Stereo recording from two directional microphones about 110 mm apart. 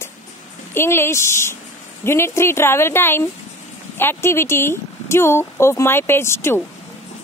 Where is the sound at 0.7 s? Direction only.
20° left (ahead or behind).